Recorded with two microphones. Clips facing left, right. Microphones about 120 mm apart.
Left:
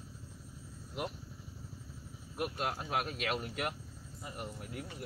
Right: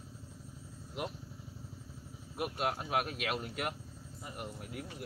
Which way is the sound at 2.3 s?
10° right (ahead or behind).